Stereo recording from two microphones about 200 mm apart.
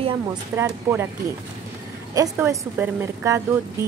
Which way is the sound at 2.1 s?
15° right (ahead or behind).